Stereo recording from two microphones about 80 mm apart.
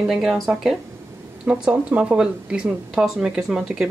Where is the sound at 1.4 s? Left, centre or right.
Centre.